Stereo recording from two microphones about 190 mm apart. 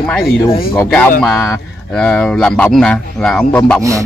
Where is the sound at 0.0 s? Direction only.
5° left (ahead or behind).